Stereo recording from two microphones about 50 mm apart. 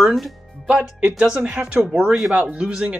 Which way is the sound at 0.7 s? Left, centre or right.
Right.